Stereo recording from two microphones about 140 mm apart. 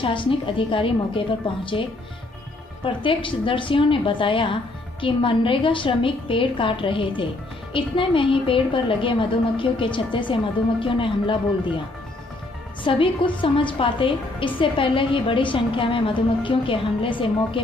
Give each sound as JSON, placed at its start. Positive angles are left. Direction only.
{"t": 0.0, "sound": "a woman's voice", "side_deg": 40}
{"t": 12.8, "sound": "a woman's voice", "side_deg": 40}